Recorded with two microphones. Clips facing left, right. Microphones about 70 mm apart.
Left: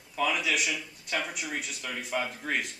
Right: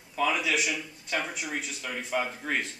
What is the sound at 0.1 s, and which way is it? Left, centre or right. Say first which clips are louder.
A man's voice: right 1 dB; centre.